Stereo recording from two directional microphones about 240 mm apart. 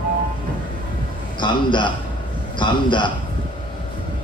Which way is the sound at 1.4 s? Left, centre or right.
Centre.